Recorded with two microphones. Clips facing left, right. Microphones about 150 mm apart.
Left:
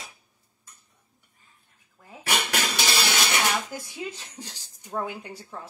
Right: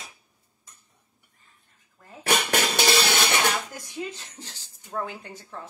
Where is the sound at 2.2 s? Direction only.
50° right (ahead or behind).